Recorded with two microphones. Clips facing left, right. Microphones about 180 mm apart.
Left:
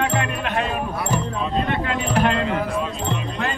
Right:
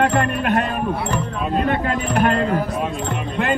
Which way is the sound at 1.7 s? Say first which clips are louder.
Right 2 dB; 45° right (ahead or behind).